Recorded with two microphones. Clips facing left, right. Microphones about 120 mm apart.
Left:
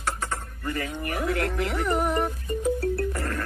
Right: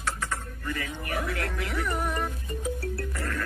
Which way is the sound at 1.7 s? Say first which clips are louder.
Left 3 dB; 30° left (ahead or behind).